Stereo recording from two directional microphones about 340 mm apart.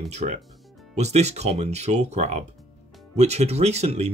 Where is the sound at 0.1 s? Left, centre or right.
Centre.